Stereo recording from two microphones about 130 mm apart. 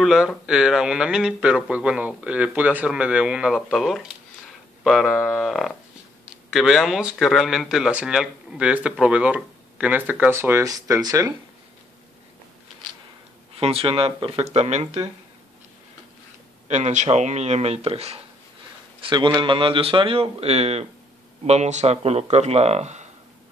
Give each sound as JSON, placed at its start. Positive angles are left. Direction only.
{"t": 0.0, "sound": "speech", "side_deg": -5}
{"t": 13.6, "sound": "speech", "side_deg": -50}
{"t": 16.6, "sound": "speech", "side_deg": -60}
{"t": 18.9, "sound": "a man's voice", "side_deg": -40}